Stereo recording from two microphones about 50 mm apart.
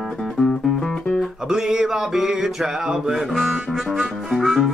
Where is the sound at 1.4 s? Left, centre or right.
Centre.